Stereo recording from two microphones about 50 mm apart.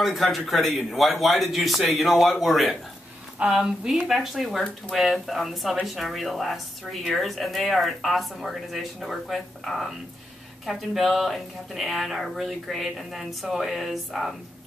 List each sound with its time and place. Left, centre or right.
0.0 s a woman's voice: centre